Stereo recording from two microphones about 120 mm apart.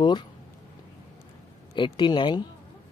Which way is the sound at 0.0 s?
40° left (ahead or behind).